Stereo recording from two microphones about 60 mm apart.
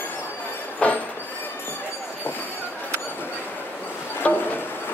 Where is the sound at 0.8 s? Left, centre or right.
Left.